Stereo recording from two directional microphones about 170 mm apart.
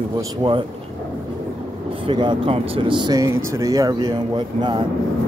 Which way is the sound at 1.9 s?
30° right (ahead or behind).